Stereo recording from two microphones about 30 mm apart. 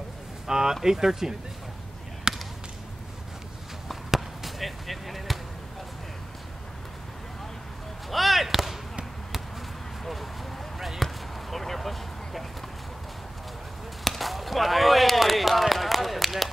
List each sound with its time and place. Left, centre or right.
0.5 s a sound: centre
0.8 s speech: centre
2.3 s basketball bounce: right
3.9 s basketball bounce: centre
8.1 s basketball bounce: centre
11.0 s basketball bounce: centre
11.5 s vehicle: centre
14.0 s chop: centre